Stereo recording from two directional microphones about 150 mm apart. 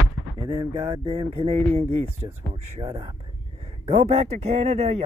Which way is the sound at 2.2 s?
15° right (ahead or behind).